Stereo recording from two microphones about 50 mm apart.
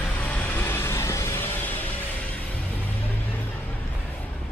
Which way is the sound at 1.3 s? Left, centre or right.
Left.